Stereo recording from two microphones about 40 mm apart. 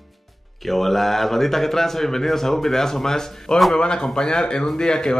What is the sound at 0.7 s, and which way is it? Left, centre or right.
Speech, centre.